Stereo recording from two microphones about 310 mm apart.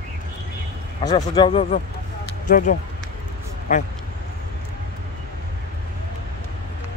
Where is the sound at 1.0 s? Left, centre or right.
Centre.